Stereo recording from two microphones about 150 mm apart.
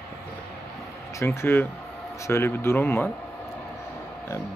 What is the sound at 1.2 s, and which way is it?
Speech, 15° left (ahead or behind).